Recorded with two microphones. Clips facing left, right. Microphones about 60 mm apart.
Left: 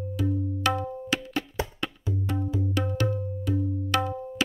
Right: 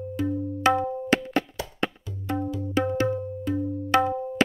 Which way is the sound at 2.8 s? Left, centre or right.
Right.